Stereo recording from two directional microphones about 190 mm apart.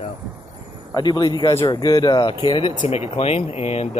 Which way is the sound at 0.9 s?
20° left (ahead or behind).